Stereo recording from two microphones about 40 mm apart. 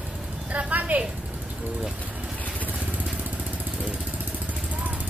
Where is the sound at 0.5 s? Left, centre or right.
Right.